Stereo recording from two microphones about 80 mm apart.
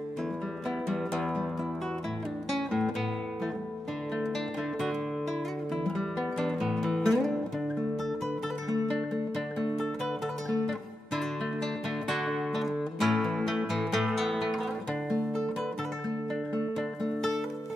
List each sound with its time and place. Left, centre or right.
0.7 s music: centre
5.9 s music: centre
8.9 s music: centre
12.1 s music: centre
17.0 s music: centre